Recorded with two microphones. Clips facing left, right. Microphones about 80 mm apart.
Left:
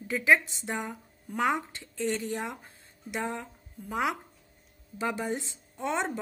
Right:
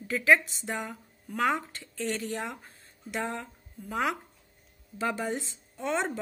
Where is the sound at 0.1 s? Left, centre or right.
Centre.